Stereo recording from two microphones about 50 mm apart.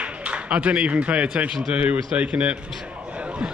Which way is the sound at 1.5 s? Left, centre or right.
Centre.